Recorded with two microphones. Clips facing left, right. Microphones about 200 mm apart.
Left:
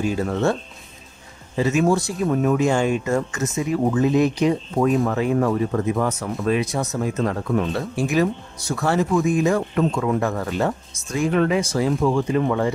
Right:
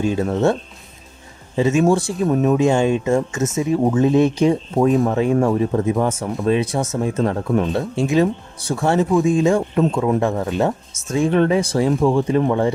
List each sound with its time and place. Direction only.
0.0 s speech: 25° right (ahead or behind)
1.6 s speech: 25° right (ahead or behind)